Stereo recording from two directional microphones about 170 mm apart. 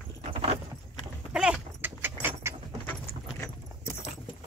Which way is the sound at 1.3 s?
5° right (ahead or behind).